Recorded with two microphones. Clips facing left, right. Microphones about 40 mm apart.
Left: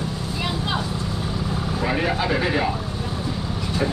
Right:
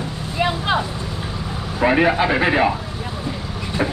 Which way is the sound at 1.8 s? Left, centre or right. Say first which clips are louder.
Right 8 dB; right.